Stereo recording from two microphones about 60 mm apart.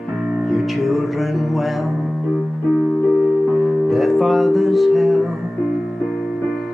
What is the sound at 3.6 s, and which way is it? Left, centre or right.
Music, centre.